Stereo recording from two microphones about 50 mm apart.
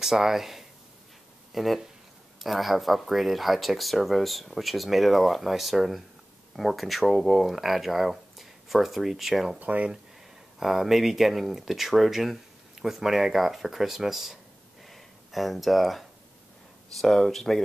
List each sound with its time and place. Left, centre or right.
0.0 s speech: centre
9.6 s speech: right
10.6 s speech: centre
14.9 s a sound: centre
16.9 s speech: centre